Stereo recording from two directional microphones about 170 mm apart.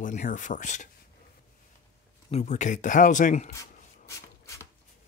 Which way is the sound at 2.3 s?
40° left (ahead or behind).